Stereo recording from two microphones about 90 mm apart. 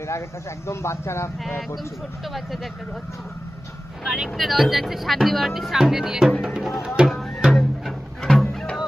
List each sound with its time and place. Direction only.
0.7 s speech: 30° left (ahead or behind)
2.3 s speech: centre (ahead or behind)
4.0 s speech: 10° right (ahead or behind)
7.1 s music: centre (ahead or behind)